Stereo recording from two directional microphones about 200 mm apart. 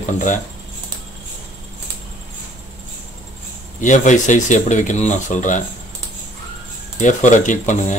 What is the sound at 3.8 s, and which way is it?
Speech, 40° left (ahead or behind).